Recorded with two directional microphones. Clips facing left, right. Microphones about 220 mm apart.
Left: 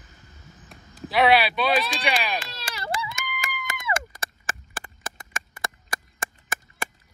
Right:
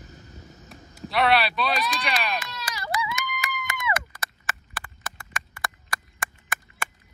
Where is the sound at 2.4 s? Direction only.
30° left (ahead or behind).